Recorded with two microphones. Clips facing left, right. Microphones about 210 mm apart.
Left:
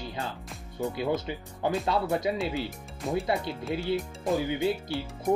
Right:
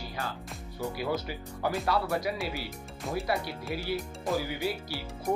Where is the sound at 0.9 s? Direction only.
20° left (ahead or behind).